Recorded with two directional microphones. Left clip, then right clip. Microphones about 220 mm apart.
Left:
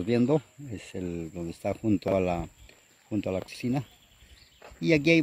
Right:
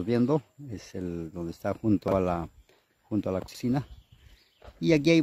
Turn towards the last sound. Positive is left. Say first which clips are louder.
# even
turn(degrees=-15)  # may be behind; listen again after turning